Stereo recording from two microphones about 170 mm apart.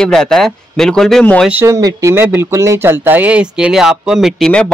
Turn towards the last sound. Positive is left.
turn(degrees=0)  # may be behind; listen again after turning